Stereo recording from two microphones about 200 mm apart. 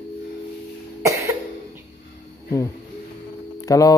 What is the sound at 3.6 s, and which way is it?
Speech, 15° left (ahead or behind).